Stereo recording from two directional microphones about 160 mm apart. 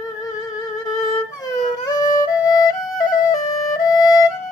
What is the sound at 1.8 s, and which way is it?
Music, 20° left (ahead or behind).